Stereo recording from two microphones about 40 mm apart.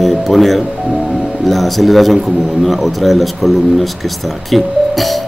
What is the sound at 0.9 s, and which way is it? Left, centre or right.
Music, right.